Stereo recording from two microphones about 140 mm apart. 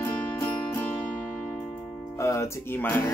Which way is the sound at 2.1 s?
20° left (ahead or behind).